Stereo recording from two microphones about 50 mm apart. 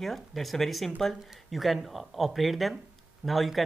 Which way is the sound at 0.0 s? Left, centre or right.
Centre.